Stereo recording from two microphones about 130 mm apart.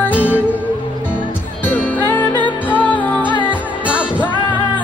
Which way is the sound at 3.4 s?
10° right (ahead or behind).